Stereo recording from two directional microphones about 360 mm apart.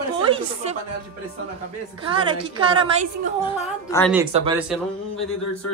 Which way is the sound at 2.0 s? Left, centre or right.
Centre.